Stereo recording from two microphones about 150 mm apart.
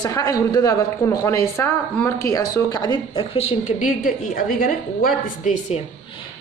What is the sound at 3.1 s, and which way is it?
A woman's voice, 40° left (ahead or behind).